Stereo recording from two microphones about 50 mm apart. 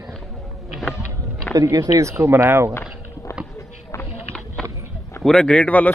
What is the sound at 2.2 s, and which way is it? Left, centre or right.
Speech, right.